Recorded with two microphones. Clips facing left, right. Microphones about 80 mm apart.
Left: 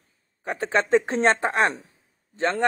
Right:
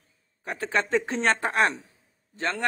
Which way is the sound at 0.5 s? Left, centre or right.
Left.